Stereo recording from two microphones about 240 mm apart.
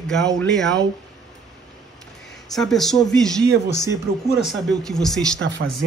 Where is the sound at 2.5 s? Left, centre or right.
Centre.